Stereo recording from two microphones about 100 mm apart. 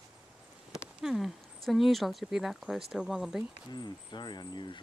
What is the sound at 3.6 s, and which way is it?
Speech, 45° left (ahead or behind).